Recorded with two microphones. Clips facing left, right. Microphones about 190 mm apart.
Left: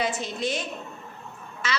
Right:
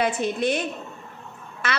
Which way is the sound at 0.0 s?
60° right (ahead or behind).